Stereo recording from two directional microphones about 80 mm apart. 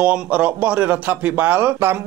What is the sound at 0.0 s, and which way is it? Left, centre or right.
Speech, centre.